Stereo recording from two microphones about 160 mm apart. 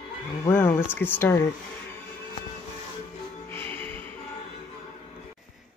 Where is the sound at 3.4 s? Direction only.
10° left (ahead or behind).